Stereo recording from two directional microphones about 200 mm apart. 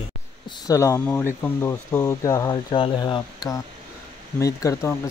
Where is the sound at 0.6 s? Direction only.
15° left (ahead or behind).